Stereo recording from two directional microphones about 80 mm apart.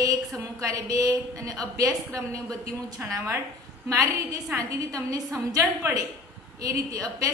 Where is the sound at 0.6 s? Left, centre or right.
Right.